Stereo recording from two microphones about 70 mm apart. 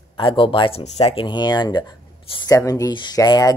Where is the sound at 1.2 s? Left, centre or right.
Left.